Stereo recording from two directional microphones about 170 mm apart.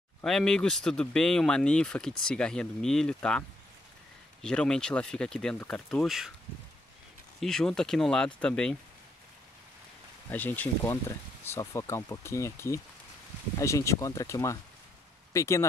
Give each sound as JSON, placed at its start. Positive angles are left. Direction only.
{"t": 0.2, "sound": "speech", "side_deg": 0}
{"t": 7.3, "sound": "speech", "side_deg": 5}
{"t": 10.3, "sound": "speech", "side_deg": 10}